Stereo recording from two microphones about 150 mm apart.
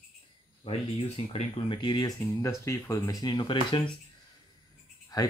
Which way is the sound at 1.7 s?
30° left (ahead or behind).